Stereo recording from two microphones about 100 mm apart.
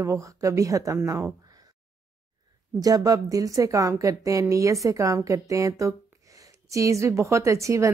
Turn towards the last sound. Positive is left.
turn(degrees=-30)  # may be behind; listen again after turning